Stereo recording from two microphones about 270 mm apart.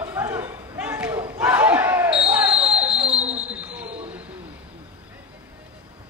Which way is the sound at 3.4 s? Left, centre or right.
Centre.